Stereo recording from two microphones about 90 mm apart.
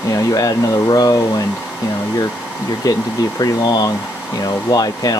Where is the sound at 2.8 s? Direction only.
40° left (ahead or behind).